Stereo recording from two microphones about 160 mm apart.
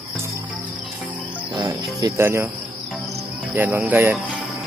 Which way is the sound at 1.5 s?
25° right (ahead or behind).